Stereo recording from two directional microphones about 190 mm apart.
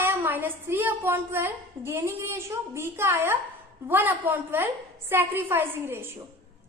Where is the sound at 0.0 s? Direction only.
10° right (ahead or behind).